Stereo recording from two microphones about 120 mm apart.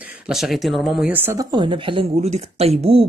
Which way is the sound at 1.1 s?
20° right (ahead or behind).